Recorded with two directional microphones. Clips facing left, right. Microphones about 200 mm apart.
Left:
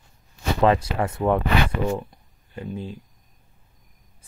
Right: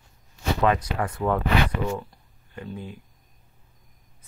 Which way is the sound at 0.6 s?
25° left (ahead or behind).